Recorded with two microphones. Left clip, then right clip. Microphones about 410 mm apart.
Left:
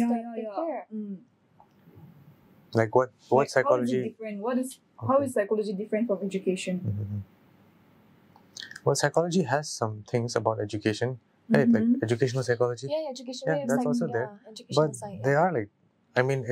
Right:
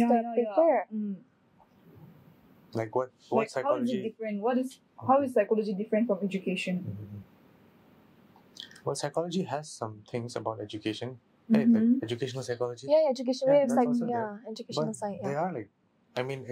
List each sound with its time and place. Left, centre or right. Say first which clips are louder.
0.2 s a sound: right 6 dB; centre
2.7 s speech: left 7 dB; left
4.2 s speech: right 1 dB; centre
8.5 s speech: left 8 dB; left
12.9 s a woman's voice: right 7 dB; right
13.8 s speech: left 2 dB; left
14.2 s speech: right 1 dB; right
15.2 s speech: left 11 dB; left